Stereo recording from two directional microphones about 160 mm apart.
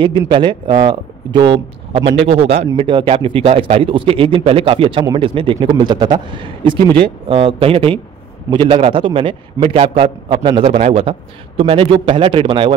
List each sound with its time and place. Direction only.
0.3 s a man's voice: 30° right (ahead or behind)